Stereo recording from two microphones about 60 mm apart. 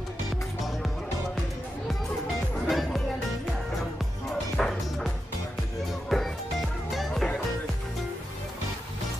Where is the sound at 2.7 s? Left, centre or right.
Centre.